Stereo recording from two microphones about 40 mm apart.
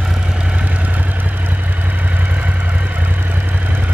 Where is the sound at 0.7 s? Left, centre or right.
Right.